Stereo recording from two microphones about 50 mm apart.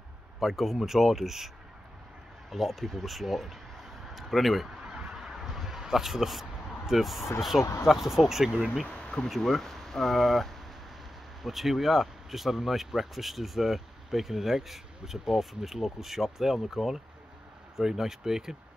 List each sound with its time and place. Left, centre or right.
0.4 s speech: centre
2.5 s speech: centre
4.8 s honk: centre
6.9 s speech: centre
8.8 s speech: left
9.3 s speech: centre